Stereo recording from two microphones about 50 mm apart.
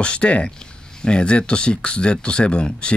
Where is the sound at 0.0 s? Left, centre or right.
Centre.